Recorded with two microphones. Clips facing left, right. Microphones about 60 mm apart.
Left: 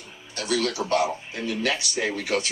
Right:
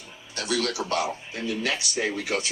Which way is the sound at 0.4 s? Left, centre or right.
Left.